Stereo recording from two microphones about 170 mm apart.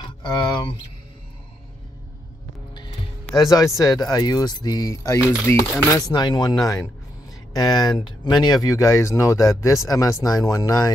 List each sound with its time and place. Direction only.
0.2 s speech: 25° left (ahead or behind)
3.3 s speech: 20° left (ahead or behind)